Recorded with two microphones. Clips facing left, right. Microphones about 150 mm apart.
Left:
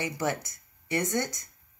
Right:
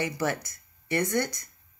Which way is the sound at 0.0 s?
20° left (ahead or behind).